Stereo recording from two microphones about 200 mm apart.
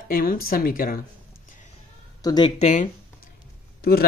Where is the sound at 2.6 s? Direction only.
35° left (ahead or behind).